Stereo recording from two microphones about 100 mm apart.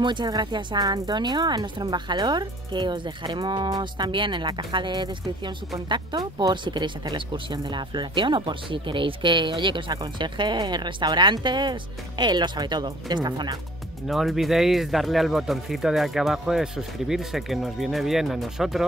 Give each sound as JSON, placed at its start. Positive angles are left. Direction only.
{"t": 0.0, "sound": "speech", "side_deg": -50}
{"t": 14.0, "sound": "speech", "side_deg": 0}